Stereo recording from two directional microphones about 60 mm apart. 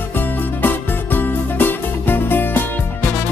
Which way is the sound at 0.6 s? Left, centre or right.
Left.